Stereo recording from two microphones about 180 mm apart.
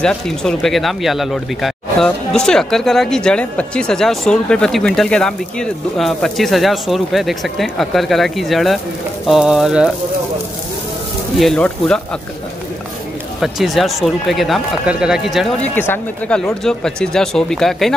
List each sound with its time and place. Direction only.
0.0 s speech: 5° left (ahead or behind)
11.3 s speech: 5° left (ahead or behind)
13.4 s speech: centre (ahead or behind)